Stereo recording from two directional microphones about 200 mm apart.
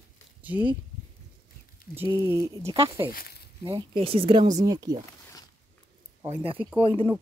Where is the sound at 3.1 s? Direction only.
50° left (ahead or behind).